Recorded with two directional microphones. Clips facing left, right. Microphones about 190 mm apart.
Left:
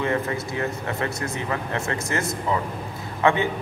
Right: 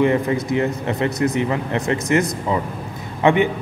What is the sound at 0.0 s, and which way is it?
A man's voice, 20° right (ahead or behind).